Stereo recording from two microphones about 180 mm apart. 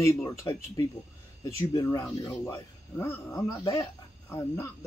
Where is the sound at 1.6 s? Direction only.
20° left (ahead or behind).